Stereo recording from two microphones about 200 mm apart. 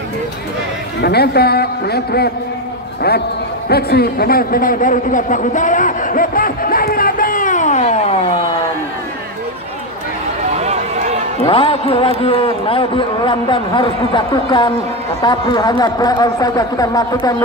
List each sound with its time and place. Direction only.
1.0 s a man's voice: 55° left (ahead or behind)
3.6 s a man's voice: 50° left (ahead or behind); by 8.2 s 35° left (ahead or behind)
10.6 s run: 35° right (ahead or behind)
11.4 s speech: 25° left (ahead or behind)